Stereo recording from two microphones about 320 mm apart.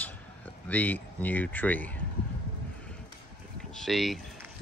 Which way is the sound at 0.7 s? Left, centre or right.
Centre.